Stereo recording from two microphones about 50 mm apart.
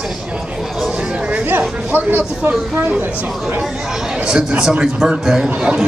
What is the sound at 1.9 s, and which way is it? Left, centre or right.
Speech, right.